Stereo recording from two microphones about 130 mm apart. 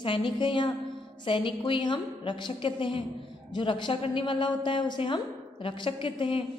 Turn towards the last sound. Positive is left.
turn(degrees=40)  # may be behind; listen again after turning